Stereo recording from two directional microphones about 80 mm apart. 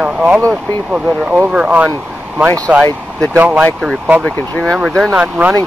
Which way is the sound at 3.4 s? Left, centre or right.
Centre.